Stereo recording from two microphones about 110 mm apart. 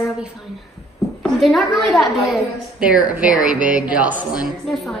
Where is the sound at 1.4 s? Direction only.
Centre (ahead or behind); by 4.3 s 15° right (ahead or behind).